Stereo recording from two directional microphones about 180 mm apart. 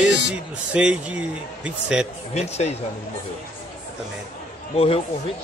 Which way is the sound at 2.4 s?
35° left (ahead or behind).